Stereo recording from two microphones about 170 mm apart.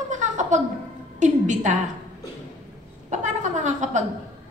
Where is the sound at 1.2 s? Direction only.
45° right (ahead or behind).